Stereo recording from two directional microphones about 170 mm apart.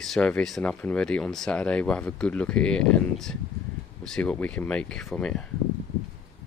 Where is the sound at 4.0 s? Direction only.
5° left (ahead or behind).